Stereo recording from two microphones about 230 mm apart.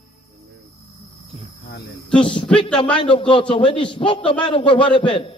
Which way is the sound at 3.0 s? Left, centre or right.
Left.